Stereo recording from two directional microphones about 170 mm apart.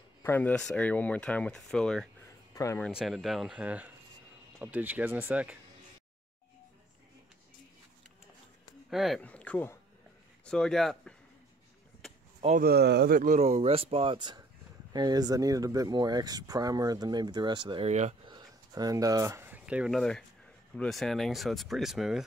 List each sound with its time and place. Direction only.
0.2 s speech: 10° left (ahead or behind)
2.5 s speech: 20° left (ahead or behind)
2.9 s speech: centre (ahead or behind)
8.9 s speech: centre (ahead or behind)
12.5 s speech: 65° right (ahead or behind); by 18.1 s 40° right (ahead or behind)
18.2 s speech: 25° right (ahead or behind); by 22.2 s centre (ahead or behind)